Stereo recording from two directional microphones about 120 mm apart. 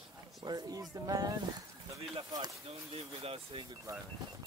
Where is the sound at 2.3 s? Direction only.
35° right (ahead or behind).